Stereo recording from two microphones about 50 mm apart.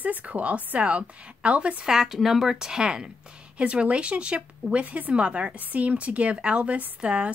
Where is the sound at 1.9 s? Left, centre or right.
Centre.